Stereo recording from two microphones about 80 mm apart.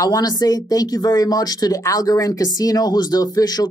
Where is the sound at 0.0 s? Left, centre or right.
Left.